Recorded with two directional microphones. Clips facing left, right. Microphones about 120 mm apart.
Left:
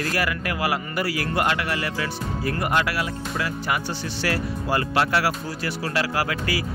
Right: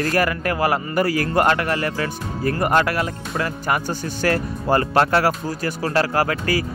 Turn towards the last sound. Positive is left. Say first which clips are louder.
# right 5 dB
turn(degrees=-45)  # may be behind; listen again after turning